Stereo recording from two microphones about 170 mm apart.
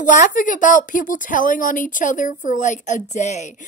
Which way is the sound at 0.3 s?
50° left (ahead or behind).